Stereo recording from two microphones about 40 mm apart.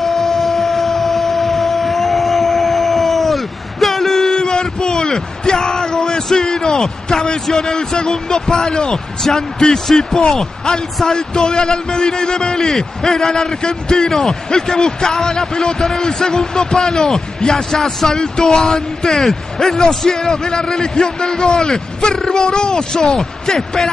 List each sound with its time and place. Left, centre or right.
0.0 s vehicle: centre
6.4 s speech: centre